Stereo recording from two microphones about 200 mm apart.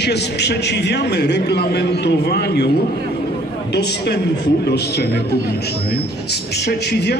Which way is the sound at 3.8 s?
55° left (ahead or behind).